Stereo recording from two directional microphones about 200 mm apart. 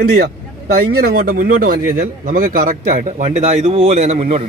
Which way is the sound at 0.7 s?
50° right (ahead or behind).